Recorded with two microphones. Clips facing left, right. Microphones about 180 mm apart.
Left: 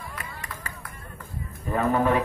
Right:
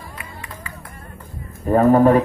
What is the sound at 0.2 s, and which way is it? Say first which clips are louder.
Music: right 2 dB; 40° left (ahead or behind).